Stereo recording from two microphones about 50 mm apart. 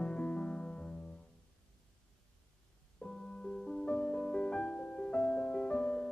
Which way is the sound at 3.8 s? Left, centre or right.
Left.